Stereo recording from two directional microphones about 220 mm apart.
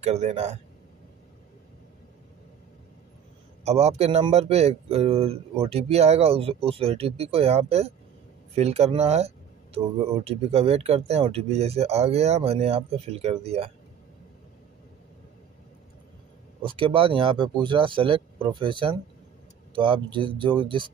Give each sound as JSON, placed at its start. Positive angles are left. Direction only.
{"t": 0.0, "sound": "speech", "side_deg": -30}
{"t": 3.6, "sound": "speech", "side_deg": -30}
{"t": 16.6, "sound": "speech", "side_deg": -25}